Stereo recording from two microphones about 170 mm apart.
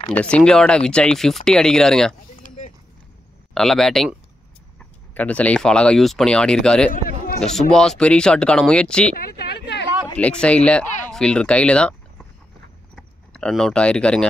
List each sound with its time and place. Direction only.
0.1 s speech: 5° left (ahead or behind)
2.4 s clip-clop: 50° left (ahead or behind)
3.5 s speech: 5° left (ahead or behind)
6.9 s a sound: 55° left (ahead or behind)
7.4 s speech: 5° left (ahead or behind)
9.1 s speech: 65° left (ahead or behind)
10.1 s speech: 5° left (ahead or behind)
12.9 s a sound: 5° left (ahead or behind)